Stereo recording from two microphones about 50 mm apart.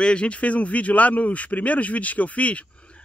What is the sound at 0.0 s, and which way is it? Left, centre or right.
Speech, left.